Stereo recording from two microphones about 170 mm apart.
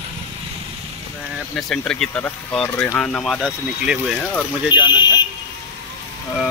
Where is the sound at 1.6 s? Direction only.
Centre (ahead or behind).